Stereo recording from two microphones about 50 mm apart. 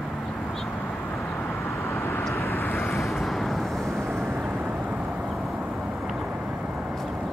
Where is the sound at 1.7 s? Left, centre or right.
Left.